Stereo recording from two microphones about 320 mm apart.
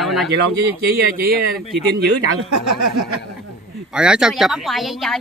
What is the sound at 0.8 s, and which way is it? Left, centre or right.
Speech, right.